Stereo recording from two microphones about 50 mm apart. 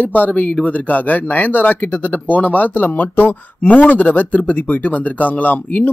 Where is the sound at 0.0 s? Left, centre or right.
Left.